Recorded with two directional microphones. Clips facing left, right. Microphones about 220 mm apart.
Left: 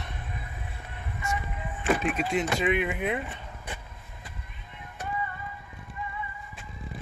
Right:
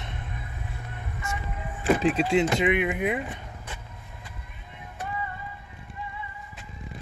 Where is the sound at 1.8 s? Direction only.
30° right (ahead or behind); by 3.4 s 15° right (ahead or behind).